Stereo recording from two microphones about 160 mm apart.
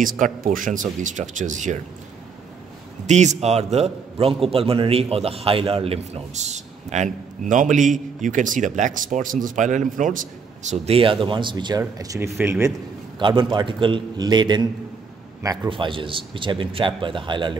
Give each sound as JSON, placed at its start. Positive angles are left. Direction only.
{"t": 0.0, "sound": "a man's voice", "side_deg": -60}
{"t": 3.1, "sound": "a man's voice", "side_deg": -45}
{"t": 13.2, "sound": "a man's voice", "side_deg": -30}